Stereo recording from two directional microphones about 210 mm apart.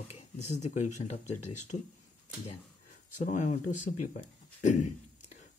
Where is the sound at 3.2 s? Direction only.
35° left (ahead or behind).